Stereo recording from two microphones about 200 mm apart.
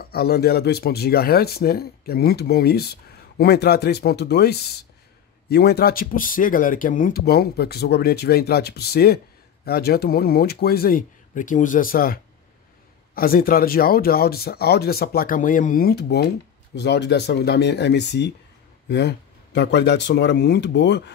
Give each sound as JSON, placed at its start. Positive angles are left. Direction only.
{"t": 0.0, "sound": "speech", "side_deg": 50}